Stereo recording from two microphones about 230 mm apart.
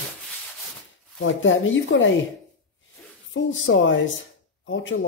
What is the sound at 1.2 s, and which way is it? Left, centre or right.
Speech, left.